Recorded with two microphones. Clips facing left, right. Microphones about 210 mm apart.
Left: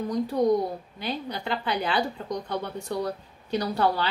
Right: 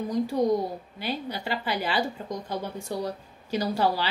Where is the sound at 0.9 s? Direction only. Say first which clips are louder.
Even; 5° right (ahead or behind).